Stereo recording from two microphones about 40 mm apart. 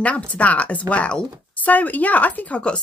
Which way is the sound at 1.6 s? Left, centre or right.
Left.